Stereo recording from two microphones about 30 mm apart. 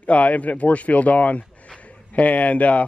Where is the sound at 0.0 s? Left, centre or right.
Left.